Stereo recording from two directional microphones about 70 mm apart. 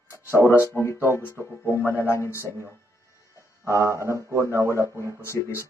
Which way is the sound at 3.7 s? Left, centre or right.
Right.